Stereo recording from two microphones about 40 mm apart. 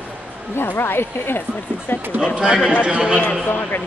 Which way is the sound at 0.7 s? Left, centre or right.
Left.